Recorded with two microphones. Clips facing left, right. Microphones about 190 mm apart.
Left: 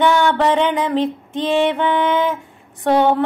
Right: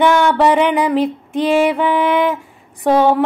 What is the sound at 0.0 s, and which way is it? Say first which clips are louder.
Music: right 3 dB; 10° right (ahead or behind).